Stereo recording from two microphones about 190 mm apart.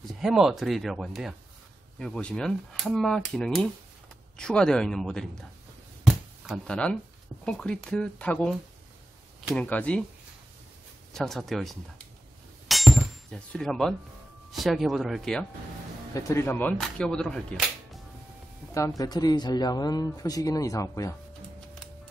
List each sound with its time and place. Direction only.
0.2 s speech: centre (ahead or behind)
6.4 s speech: centre (ahead or behind)
9.6 s speech: 10° left (ahead or behind)
11.1 s speech: centre (ahead or behind)
12.6 s a sound: centre (ahead or behind)
14.5 s speech: centre (ahead or behind)
16.1 s speech: 15° left (ahead or behind)
18.7 s speech: 15° left (ahead or behind)